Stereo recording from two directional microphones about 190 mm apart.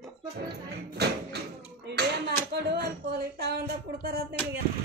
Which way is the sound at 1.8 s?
60° right (ahead or behind).